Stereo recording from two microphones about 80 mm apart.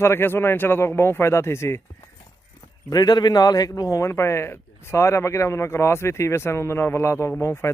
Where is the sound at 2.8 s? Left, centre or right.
Left.